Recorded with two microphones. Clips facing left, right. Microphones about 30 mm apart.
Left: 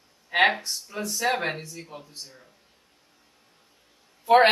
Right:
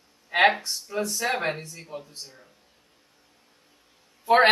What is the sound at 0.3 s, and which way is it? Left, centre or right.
Speech, centre.